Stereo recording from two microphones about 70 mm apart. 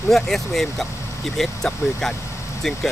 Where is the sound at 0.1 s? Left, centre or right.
Centre.